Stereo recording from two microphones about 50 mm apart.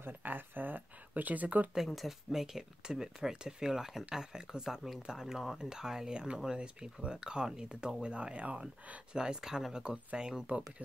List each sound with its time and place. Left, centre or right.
0.0 s speech: right
2.0 s speech: centre; by 9.0 s right
9.1 s speech: centre